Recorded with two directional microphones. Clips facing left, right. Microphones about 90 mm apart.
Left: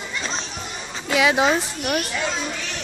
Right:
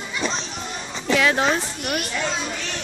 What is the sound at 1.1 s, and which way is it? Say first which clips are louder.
Speech: left 2 dB; 5° left (ahead or behind).